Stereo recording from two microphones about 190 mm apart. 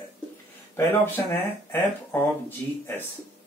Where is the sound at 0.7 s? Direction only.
10° left (ahead or behind).